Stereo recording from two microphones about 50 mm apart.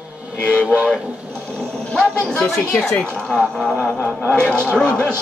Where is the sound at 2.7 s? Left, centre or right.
Centre.